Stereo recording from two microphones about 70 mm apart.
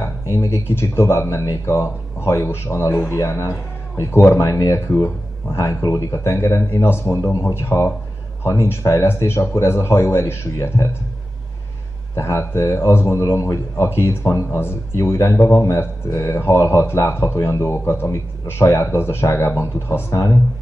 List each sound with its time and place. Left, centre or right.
0.0 s speech: left
12.2 s speech: left